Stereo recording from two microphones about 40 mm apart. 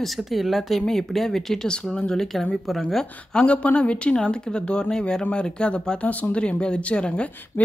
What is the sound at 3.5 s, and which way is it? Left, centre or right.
Speech, left.